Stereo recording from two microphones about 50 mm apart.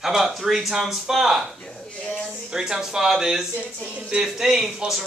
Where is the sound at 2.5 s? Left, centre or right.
Centre.